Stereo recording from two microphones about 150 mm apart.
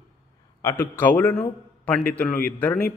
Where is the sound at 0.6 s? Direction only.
20° left (ahead or behind).